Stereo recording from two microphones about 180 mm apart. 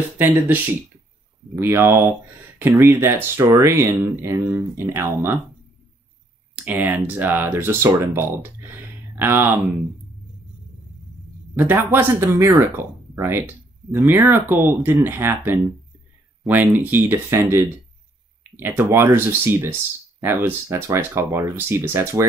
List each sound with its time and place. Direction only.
0.2 s speech: 10° right (ahead or behind)
6.5 s speech: 10° right (ahead or behind)
11.5 s speech: 10° right (ahead or behind)